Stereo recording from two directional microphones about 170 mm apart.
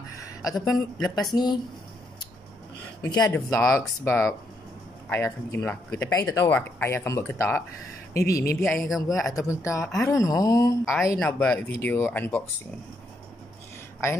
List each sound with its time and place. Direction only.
0.2 s a sound: 20° left (ahead or behind)
0.7 s speech: centre (ahead or behind)
1.3 s speech: 25° left (ahead or behind)
3.0 s speech: 20° left (ahead or behind)
8.8 s speech: centre (ahead or behind)
9.5 s speech: 15° left (ahead or behind)
11.1 s speech: 5° left (ahead or behind)